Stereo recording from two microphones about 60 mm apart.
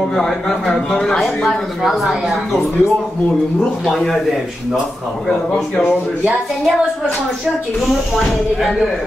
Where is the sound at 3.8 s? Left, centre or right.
Centre.